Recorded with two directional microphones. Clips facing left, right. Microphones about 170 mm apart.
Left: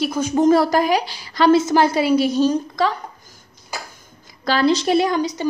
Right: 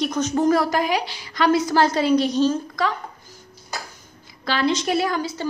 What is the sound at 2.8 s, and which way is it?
Speech, 25° left (ahead or behind).